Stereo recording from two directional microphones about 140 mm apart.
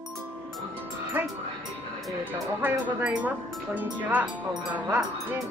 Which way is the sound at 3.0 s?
10° right (ahead or behind).